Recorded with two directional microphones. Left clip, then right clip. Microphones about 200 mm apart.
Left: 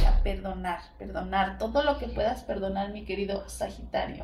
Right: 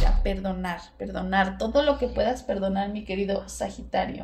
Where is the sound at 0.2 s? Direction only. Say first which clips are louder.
Right 4 dB; 50° right (ahead or behind).